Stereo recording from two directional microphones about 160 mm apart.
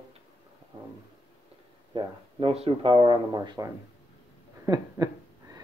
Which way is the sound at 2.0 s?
35° right (ahead or behind).